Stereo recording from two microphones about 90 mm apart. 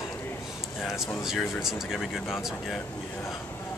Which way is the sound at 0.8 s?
5° right (ahead or behind).